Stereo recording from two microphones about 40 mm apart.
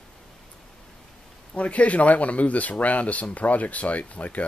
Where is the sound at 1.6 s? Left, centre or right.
Left.